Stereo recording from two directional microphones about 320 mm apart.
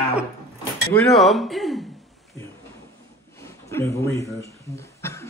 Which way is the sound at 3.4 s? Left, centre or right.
Centre.